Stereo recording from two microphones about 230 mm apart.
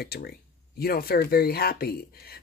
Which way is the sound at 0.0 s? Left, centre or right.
Left.